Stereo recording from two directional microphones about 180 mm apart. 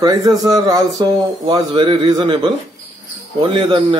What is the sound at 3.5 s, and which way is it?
Speech, 25° right (ahead or behind).